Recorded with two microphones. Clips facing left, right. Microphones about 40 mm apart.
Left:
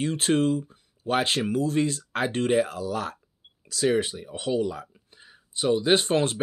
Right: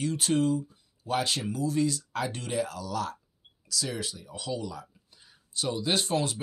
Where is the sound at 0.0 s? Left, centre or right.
Left.